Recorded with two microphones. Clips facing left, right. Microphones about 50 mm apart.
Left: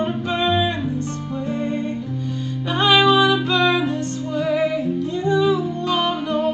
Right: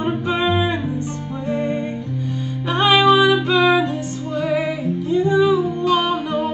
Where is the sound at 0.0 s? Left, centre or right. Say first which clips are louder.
Right 1 dB; centre.